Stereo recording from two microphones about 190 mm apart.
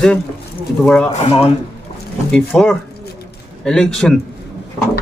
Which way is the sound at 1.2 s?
30° left (ahead or behind).